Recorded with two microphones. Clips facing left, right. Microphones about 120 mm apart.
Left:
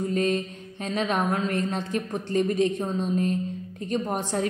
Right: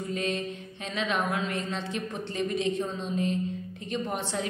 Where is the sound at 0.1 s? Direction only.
45° left (ahead or behind).